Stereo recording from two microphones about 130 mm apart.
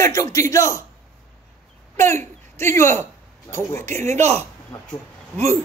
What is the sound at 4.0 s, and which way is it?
Speech, 60° right (ahead or behind).